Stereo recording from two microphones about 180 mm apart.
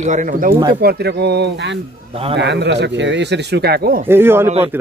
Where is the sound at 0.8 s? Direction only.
65° right (ahead or behind).